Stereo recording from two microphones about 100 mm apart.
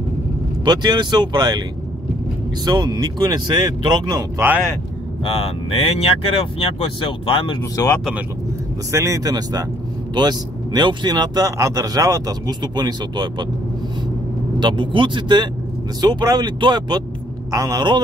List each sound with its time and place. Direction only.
0.7 s speech: 45° right (ahead or behind)
2.6 s speech: 45° right (ahead or behind)
4.4 s speech: 30° right (ahead or behind)
5.2 s speech: 75° left (ahead or behind)
7.7 s speech: 35° left (ahead or behind)
8.9 s speech: 30° right (ahead or behind)
11.5 s speech: 35° right (ahead or behind)
14.6 s speech: 50° right (ahead or behind)
17.5 s speech: 40° right (ahead or behind)